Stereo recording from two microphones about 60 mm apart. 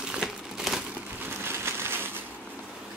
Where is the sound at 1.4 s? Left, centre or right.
Right.